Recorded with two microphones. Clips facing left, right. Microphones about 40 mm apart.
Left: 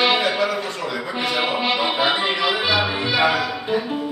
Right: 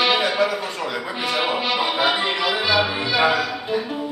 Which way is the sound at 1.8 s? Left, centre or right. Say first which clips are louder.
Even; centre.